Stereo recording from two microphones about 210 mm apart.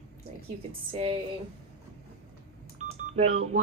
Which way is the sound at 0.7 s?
25° right (ahead or behind).